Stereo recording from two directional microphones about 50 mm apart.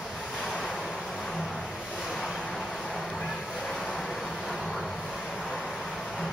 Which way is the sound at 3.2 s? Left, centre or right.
Centre.